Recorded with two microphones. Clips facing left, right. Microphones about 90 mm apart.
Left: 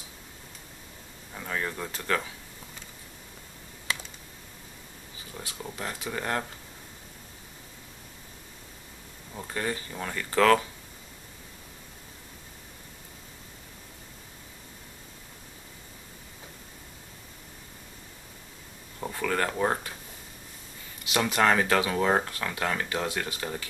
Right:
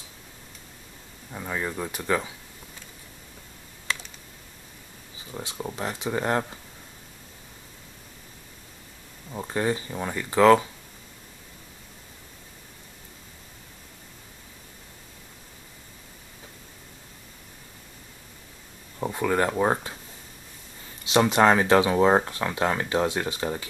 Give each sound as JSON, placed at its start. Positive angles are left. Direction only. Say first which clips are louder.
{"t": 1.3, "sound": "speech", "louder": "right 2 dB", "side_deg": -10}
{"t": 5.4, "sound": "speech", "louder": "right 5 dB", "side_deg": -25}
{"t": 9.3, "sound": "speech", "louder": "right 6 dB", "side_deg": -20}
{"t": 18.9, "sound": "speech", "louder": "right 5 dB", "side_deg": -20}
{"t": 21.0, "sound": "speech", "louder": "right 5 dB", "side_deg": -25}